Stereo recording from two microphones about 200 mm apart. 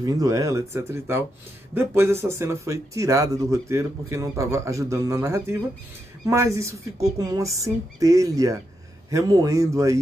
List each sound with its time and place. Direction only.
0.0 s speech: 15° right (ahead or behind)